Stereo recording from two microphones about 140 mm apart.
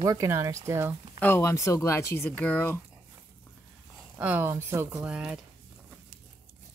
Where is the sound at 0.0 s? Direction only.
25° right (ahead or behind).